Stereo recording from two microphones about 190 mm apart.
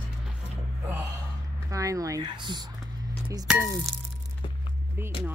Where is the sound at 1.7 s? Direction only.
15° right (ahead or behind).